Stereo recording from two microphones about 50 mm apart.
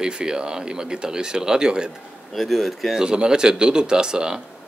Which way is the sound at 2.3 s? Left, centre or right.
Centre.